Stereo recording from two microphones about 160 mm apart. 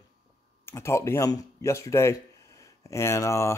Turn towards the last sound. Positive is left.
turn(degrees=20)  # may be behind; listen again after turning